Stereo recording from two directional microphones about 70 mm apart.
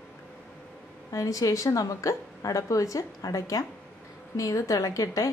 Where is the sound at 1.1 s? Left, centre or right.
Left.